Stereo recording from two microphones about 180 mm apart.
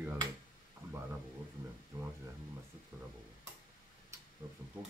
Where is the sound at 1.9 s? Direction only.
15° right (ahead or behind).